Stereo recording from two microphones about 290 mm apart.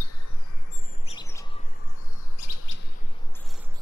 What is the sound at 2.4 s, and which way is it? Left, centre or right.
Chirp, left.